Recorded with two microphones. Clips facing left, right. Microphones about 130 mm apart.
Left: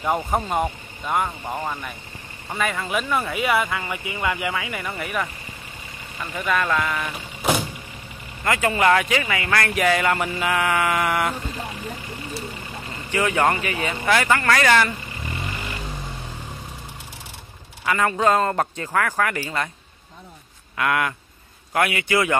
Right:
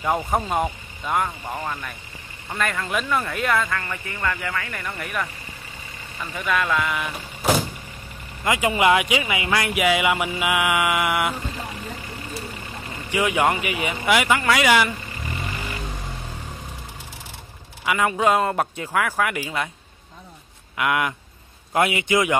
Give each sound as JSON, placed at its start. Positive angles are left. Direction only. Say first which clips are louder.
{"t": 0.0, "sound": "speech", "louder": "even", "side_deg": 0}
{"t": 8.5, "sound": "speech", "louder": "even", "side_deg": -15}
{"t": 12.9, "sound": "speech", "louder": "even", "side_deg": -10}
{"t": 17.8, "sound": "speech", "louder": "even", "side_deg": -10}
{"t": 20.7, "sound": "a man's voice", "louder": "even", "side_deg": -15}